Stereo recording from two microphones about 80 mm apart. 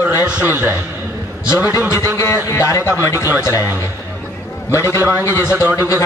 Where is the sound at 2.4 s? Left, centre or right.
Left.